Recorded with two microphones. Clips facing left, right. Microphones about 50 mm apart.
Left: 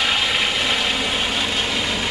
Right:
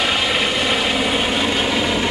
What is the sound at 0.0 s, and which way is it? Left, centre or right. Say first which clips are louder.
Vehicle: right 2 dB; centre.